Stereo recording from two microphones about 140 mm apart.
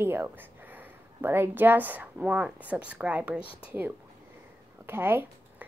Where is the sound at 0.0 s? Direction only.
15° right (ahead or behind).